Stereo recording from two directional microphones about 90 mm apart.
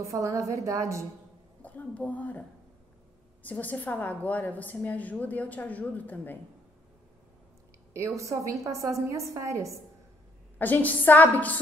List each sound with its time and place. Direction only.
0.1 s a woman's voice: 35° right (ahead or behind)
1.6 s a woman's voice: 15° left (ahead or behind)
3.4 s a woman's voice: 15° left (ahead or behind)
8.2 s a woman's voice: 35° right (ahead or behind)
10.6 s a woman's voice: 20° left (ahead or behind)